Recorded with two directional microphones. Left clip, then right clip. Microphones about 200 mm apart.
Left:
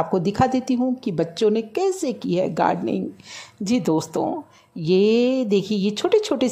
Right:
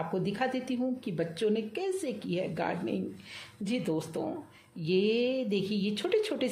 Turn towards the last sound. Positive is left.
turn(degrees=35)  # may be behind; listen again after turning